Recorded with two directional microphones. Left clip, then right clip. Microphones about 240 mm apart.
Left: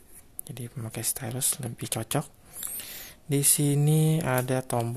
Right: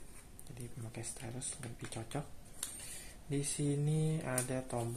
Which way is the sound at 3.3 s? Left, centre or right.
Left.